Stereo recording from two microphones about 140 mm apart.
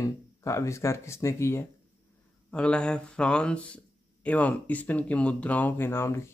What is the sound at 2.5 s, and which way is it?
Speech, 5° left (ahead or behind).